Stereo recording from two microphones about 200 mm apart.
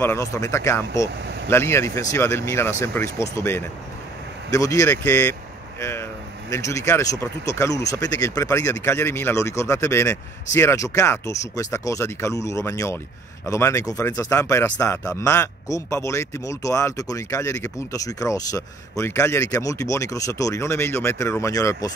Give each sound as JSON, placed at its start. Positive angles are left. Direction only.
{"t": 0.0, "sound": "a man's voice", "side_deg": 15}